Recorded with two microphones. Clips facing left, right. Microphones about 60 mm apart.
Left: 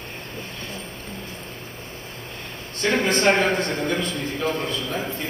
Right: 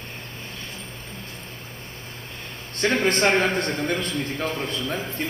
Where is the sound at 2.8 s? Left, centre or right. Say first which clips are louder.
Even; right.